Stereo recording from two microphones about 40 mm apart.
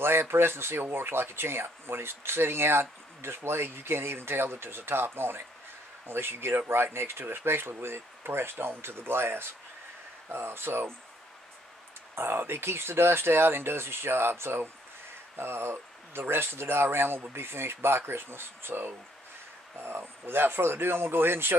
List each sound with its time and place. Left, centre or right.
0.0 s speech: right
6.0 s speech: right
12.2 s speech: right